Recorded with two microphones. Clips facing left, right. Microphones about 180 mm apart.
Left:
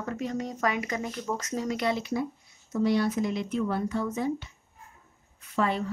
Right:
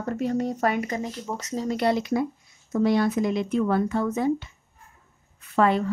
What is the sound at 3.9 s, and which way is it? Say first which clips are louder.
Speech: right 5 dB; 60° right (ahead or behind).